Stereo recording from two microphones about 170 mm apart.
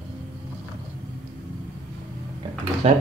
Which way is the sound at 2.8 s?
35° right (ahead or behind).